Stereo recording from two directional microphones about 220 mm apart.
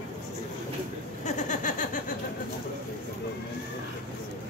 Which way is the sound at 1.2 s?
35° left (ahead or behind).